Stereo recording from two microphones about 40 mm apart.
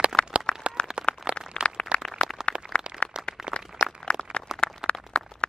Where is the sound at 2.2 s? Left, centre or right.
Centre.